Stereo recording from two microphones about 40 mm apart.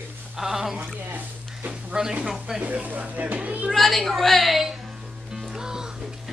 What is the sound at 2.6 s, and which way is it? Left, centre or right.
Speech, right.